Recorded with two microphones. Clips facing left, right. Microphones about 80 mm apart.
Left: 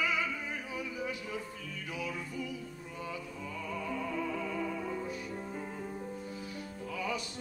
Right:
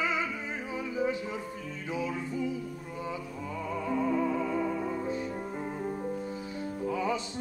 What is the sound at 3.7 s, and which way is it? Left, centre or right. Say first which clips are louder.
Music: right 8 dB; right.